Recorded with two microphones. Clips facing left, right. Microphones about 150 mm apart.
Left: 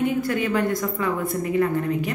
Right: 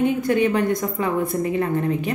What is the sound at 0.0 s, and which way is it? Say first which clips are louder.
A woman's voice: right 4 dB; 20° right (ahead or behind).